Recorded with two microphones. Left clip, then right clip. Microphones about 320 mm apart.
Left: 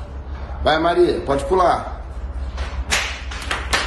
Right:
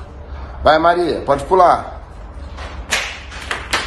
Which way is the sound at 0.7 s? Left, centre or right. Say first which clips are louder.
Right 4 dB; centre.